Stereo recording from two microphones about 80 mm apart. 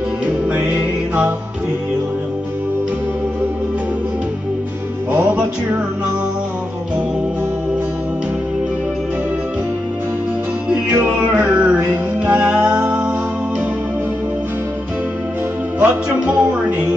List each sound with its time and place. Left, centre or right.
0.5 s music: right
5.1 s music: right
10.7 s music: centre
15.8 s music: centre